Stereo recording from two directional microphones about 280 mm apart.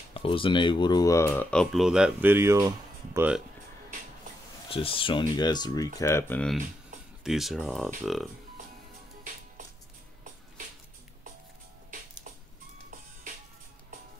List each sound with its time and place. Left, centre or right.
0.1 s speech: centre
4.6 s speech: centre